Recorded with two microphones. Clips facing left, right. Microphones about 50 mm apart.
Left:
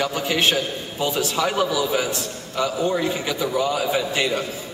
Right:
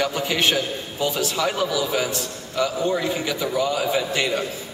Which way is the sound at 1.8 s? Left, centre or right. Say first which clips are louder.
Left 1 dB; centre.